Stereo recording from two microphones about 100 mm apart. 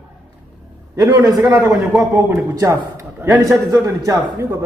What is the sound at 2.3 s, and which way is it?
A man's voice, 30° right (ahead or behind).